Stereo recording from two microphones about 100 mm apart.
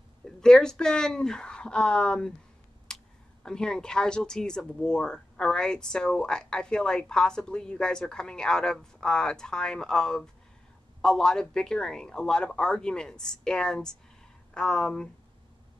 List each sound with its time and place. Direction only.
0.2 s speech: 5° left (ahead or behind)
2.9 s a sound: 5° left (ahead or behind)
3.4 s speech: 5° left (ahead or behind)